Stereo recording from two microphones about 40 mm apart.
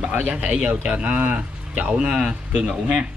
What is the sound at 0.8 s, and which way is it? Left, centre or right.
Speech, right.